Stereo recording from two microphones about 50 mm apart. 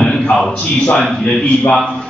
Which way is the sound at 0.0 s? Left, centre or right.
Centre.